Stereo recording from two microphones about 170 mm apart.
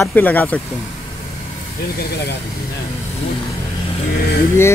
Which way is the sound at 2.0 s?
65° left (ahead or behind).